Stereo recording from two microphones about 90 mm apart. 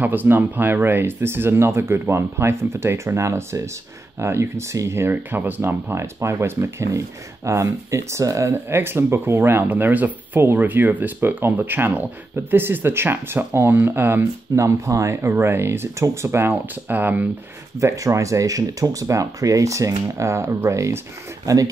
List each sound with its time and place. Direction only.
0.0 s speech: 20° right (ahead or behind)
17.7 s speech: 35° right (ahead or behind)